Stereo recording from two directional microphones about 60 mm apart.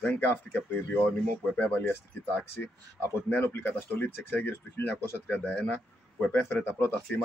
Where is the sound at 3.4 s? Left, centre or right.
Left.